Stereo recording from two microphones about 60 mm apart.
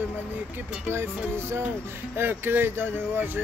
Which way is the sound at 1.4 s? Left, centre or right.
Right.